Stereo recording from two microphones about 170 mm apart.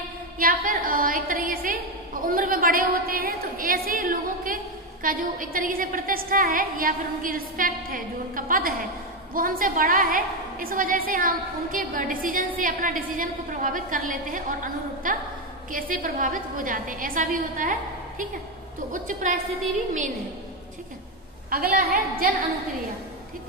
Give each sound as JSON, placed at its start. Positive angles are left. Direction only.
{"t": 0.4, "sound": "a woman's voice", "side_deg": -55}
{"t": 21.5, "sound": "a woman's voice", "side_deg": -60}